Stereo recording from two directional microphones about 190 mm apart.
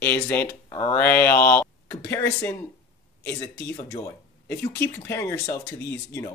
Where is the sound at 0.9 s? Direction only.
10° left (ahead or behind).